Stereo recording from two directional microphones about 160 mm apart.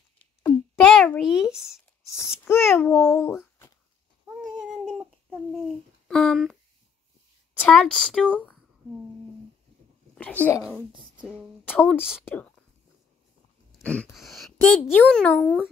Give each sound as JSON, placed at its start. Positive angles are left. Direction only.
{"t": 0.4, "sound": "a sound", "side_deg": 5}
{"t": 1.2, "sound": "speech", "side_deg": -5}
{"t": 2.5, "sound": "a sound", "side_deg": 15}
{"t": 2.8, "sound": "a child's voice", "side_deg": 15}
{"t": 4.4, "sound": "child singing", "side_deg": 0}
{"t": 5.5, "sound": "babbling", "side_deg": 5}
{"t": 7.5, "sound": "a sound", "side_deg": 5}
{"t": 10.4, "sound": "a child's voice", "side_deg": 15}
{"t": 13.7, "sound": "a child's voice", "side_deg": 10}